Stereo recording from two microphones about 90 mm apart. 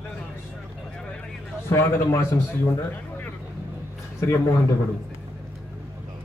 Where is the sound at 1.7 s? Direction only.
30° left (ahead or behind).